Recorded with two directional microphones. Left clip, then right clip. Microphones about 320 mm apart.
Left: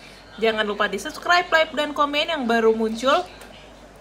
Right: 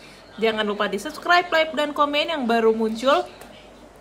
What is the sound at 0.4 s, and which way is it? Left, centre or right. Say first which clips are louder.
A woman's voice: left 1 dB; centre.